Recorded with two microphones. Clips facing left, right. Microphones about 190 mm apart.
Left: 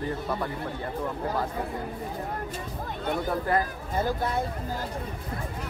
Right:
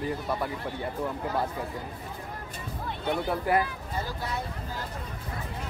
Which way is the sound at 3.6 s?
50° left (ahead or behind).